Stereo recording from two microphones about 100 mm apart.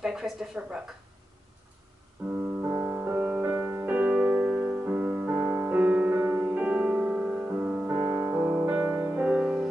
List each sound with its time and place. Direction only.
0.0 s a sound: 5° right (ahead or behind)
2.6 s music: 20° right (ahead or behind)
3.5 s music: 30° right (ahead or behind)
3.8 s music: 15° right (ahead or behind)